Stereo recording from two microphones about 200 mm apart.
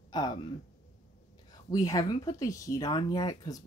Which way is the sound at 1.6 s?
15° left (ahead or behind).